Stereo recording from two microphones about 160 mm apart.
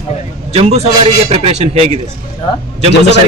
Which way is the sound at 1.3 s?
40° right (ahead or behind).